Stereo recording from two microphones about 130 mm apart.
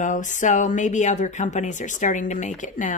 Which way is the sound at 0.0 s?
75° left (ahead or behind).